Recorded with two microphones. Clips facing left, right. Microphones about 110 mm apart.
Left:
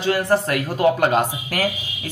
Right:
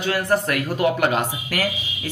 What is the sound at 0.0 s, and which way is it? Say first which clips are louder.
Speech: left 2 dB; 30° left (ahead or behind).